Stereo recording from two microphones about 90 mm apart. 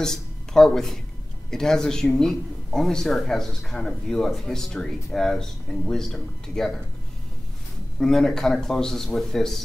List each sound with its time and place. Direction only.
0.0 s speech: 5° left (ahead or behind)
8.0 s speech: 5° left (ahead or behind)